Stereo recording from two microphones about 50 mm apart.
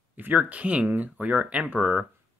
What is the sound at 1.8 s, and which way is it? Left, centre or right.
Speech, centre.